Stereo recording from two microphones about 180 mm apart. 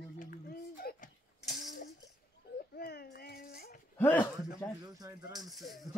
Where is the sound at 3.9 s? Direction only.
10° left (ahead or behind).